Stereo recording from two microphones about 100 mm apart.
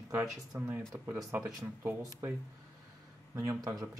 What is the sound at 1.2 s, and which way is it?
Speech, 25° right (ahead or behind).